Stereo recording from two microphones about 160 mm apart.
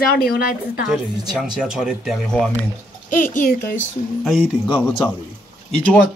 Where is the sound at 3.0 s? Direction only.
55° left (ahead or behind).